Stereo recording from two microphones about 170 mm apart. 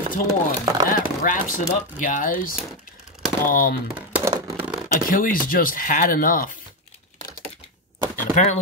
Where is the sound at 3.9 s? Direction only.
10° right (ahead or behind).